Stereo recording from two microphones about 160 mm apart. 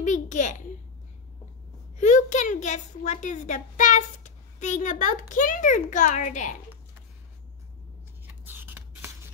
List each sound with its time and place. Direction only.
0.0 s a sound: 50° left (ahead or behind)
2.0 s a woman's voice: 50° left (ahead or behind)
8.5 s writing: 15° right (ahead or behind)